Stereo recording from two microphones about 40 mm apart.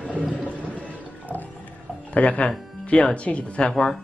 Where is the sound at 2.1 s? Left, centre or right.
Left.